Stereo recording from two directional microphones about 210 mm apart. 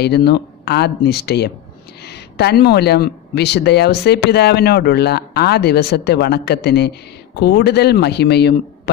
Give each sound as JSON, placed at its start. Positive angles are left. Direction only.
{"t": 0.0, "sound": "speech", "side_deg": 50}